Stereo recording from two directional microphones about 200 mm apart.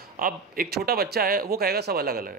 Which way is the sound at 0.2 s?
45° right (ahead or behind).